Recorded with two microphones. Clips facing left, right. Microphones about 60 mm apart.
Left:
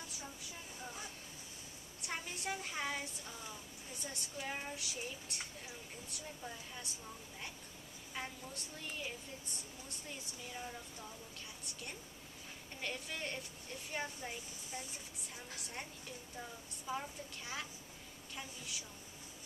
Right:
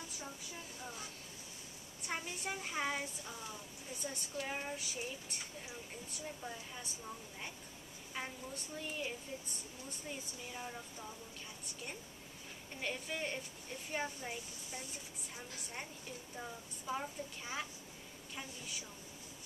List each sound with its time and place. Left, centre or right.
2.0 s speech: centre
8.1 s a woman's voice: centre